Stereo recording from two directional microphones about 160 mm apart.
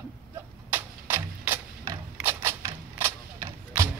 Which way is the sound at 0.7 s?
10° right (ahead or behind).